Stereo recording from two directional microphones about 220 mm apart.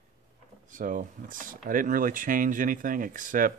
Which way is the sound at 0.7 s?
35° right (ahead or behind).